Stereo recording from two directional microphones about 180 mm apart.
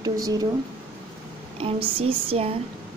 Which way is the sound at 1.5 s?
30° right (ahead or behind).